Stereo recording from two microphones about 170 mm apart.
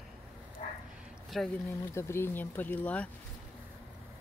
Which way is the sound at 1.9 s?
15° left (ahead or behind).